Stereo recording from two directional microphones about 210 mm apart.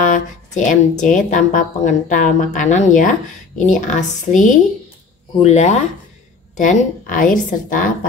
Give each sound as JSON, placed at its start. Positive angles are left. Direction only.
{"t": 0.0, "sound": "a woman's voice", "side_deg": 35}